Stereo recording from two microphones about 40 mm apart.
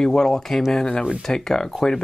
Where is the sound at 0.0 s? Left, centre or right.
Centre.